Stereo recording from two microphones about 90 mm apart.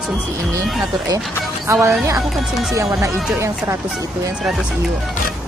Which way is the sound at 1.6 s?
30° right (ahead or behind).